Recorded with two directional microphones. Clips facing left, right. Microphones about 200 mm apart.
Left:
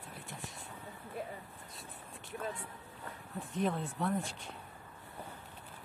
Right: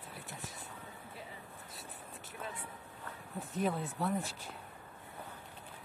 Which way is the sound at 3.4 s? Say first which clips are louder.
Even; centre (ahead or behind).